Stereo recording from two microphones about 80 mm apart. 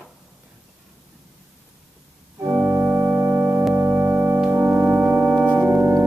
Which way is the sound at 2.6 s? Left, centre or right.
Right.